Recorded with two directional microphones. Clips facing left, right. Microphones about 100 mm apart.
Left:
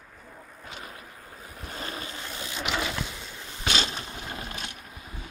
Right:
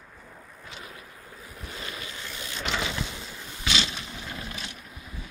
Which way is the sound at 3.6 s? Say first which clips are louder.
Left 1 dB; 40° left (ahead or behind).